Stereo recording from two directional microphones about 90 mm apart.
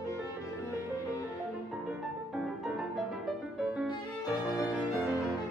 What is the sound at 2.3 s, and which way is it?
Music, 5° right (ahead or behind).